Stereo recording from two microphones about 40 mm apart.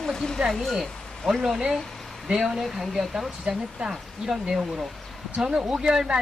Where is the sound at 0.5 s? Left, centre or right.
Centre.